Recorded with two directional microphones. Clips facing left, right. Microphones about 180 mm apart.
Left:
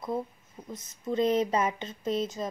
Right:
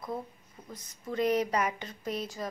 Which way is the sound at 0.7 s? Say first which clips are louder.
Left 4 dB; 20° left (ahead or behind).